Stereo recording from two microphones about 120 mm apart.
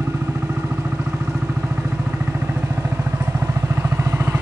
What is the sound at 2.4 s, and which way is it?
Vehicle, 15° right (ahead or behind).